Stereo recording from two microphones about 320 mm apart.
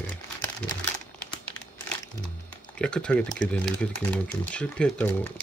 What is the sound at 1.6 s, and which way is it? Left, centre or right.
Crumpling, left.